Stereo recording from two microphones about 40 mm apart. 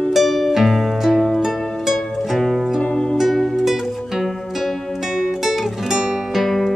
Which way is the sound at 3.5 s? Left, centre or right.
Centre.